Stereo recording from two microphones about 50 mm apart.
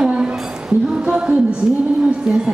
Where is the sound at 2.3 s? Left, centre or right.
Centre.